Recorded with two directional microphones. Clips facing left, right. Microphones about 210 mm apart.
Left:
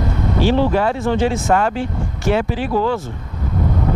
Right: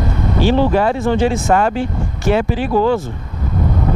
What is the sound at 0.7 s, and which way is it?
Speech, 10° right (ahead or behind).